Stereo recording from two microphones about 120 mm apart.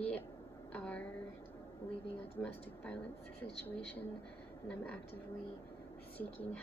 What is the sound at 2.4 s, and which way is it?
Speech, 15° left (ahead or behind).